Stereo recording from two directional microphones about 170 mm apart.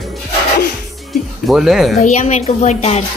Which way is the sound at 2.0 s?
40° left (ahead or behind).